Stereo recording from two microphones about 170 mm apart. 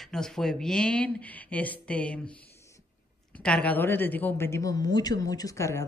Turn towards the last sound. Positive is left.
turn(degrees=15)  # may be behind; listen again after turning